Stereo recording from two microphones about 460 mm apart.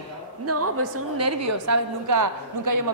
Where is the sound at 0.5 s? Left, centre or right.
Right.